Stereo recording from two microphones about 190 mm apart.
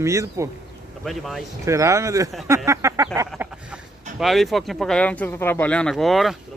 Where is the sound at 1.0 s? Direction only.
Centre (ahead or behind).